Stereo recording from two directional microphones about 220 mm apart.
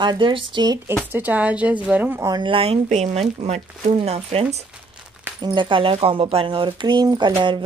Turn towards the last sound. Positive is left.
turn(degrees=-20)  # may be behind; listen again after turning